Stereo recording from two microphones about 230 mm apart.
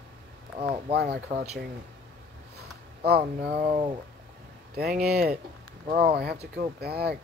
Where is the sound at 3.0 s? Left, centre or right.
Right.